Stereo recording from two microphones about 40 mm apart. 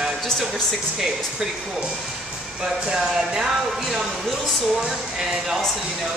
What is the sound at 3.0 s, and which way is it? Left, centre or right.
Speech, centre.